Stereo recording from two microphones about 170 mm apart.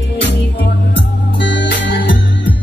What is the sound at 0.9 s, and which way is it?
Music, 90° left.